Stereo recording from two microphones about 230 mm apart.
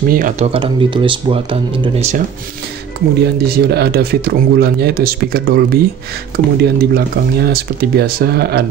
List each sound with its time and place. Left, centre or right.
0.1 s speech: right
0.5 s speech: right
3.2 s speech: right